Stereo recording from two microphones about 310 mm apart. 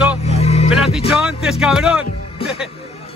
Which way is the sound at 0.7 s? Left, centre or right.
Centre.